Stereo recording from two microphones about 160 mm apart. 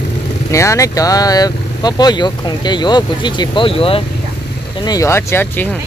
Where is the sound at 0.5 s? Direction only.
20° left (ahead or behind); by 4.0 s 35° left (ahead or behind).